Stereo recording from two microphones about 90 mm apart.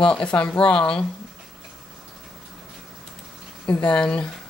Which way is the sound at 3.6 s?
10° left (ahead or behind).